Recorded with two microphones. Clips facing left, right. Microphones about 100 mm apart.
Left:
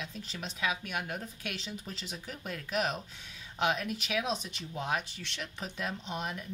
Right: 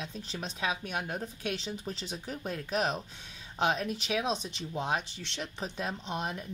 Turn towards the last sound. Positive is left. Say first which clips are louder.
# right 2 dB
turn(degrees=-40)  # may be behind; listen again after turning